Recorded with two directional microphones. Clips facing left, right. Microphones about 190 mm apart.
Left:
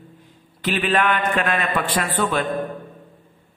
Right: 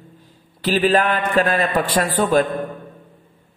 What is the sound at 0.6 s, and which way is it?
A man's voice, 35° right (ahead or behind).